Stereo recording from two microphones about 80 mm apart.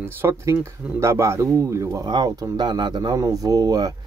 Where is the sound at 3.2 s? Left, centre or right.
Right.